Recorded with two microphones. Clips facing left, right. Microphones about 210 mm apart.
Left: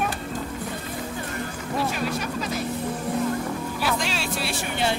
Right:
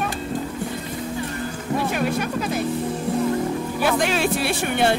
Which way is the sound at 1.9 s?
55° right (ahead or behind).